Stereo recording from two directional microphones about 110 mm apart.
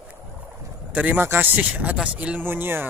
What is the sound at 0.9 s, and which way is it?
Speech, 15° right (ahead or behind).